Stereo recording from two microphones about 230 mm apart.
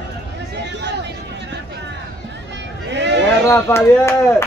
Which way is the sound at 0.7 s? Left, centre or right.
Right.